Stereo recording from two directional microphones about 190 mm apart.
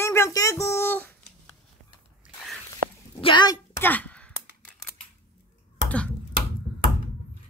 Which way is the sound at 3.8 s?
10° left (ahead or behind).